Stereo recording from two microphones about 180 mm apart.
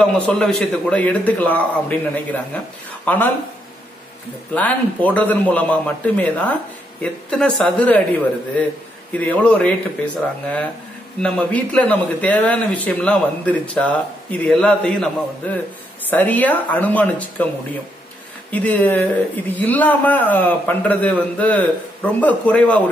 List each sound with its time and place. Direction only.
0.0 s speech: 5° left (ahead or behind)
4.6 s speech: 10° left (ahead or behind)
9.1 s speech: 10° left (ahead or behind)
16.1 s speech: 10° left (ahead or behind)
18.5 s speech: 10° left (ahead or behind)